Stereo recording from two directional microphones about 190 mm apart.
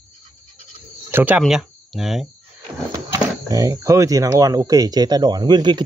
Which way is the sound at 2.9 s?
20° right (ahead or behind).